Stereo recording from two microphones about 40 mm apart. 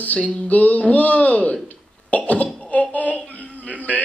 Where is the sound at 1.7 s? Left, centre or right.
Left.